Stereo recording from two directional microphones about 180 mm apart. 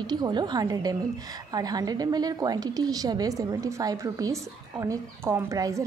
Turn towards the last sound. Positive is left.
turn(degrees=-20)  # may be behind; listen again after turning